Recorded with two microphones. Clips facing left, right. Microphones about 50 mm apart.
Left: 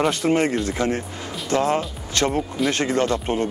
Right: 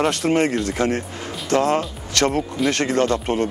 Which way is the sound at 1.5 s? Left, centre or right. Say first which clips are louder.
Right 2 dB; right.